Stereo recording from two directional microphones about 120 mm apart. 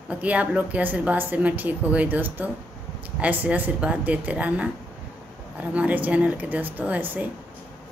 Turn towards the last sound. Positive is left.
turn(degrees=-15)  # may be behind; listen again after turning